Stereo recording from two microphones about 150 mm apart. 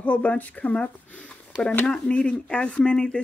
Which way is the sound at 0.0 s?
10° left (ahead or behind).